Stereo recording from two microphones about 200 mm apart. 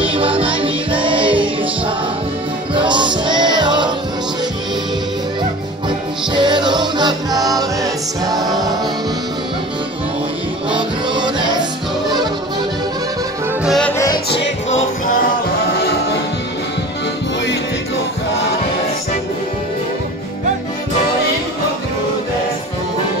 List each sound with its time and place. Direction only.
0.0 s music: 25° right (ahead or behind)
2.7 s music: 25° right (ahead or behind)
5.9 s music: 25° right (ahead or behind)
10.7 s music: 25° right (ahead or behind)
13.7 s music: 5° left (ahead or behind)
13.9 s music: 20° left (ahead or behind)
14.3 s music: 65° left (ahead or behind)
15.8 s music: 50° left (ahead or behind)